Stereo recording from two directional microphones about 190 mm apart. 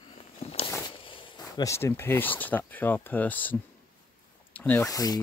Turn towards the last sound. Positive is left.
turn(degrees=20)  # may be behind; listen again after turning